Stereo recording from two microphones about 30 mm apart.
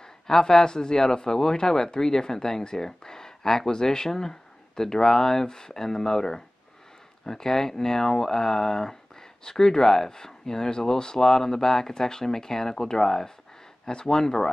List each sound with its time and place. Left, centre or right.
0.0 s speech: centre